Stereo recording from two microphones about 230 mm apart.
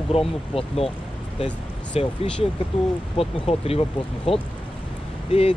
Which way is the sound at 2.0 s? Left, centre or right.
Left.